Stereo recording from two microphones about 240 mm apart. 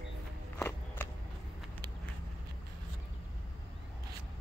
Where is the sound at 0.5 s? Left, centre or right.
Centre.